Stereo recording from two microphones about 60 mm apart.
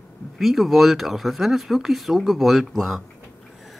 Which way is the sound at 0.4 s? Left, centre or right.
Centre.